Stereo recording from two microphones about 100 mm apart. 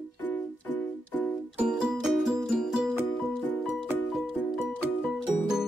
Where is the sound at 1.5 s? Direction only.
5° right (ahead or behind).